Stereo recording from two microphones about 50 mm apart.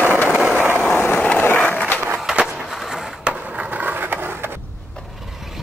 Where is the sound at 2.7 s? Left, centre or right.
Centre.